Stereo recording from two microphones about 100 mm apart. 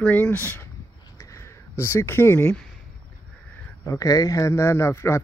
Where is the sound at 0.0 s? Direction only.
15° left (ahead or behind).